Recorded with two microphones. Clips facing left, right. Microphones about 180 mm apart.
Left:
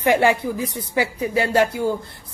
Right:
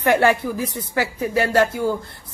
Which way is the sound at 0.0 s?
15° left (ahead or behind).